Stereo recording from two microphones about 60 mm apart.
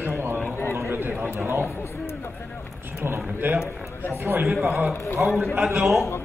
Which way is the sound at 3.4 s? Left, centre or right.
Right.